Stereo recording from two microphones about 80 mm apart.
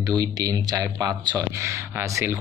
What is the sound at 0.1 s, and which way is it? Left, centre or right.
Speech, right.